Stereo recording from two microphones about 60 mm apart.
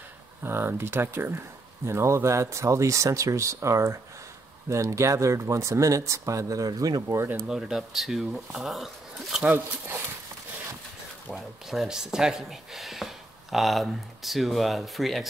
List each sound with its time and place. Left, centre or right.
0.4 s speech: right
7.4 s speech: centre
11.3 s speech: centre